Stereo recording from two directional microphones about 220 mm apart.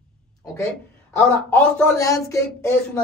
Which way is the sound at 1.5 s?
15° left (ahead or behind).